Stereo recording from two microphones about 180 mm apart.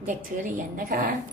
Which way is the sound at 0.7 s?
50° right (ahead or behind).